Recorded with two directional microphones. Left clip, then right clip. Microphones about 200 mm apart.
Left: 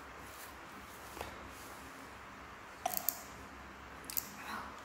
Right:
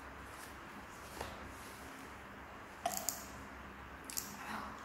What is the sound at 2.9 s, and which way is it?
Clicking, centre (ahead or behind).